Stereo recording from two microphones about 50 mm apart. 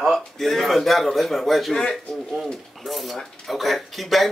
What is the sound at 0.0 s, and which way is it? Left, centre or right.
A man's voice, centre.